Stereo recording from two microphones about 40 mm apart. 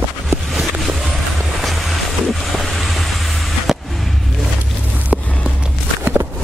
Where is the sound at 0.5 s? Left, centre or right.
Centre.